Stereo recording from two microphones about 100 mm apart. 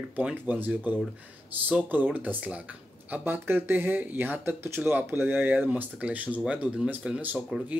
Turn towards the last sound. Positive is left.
turn(degrees=0)  # may be behind; listen again after turning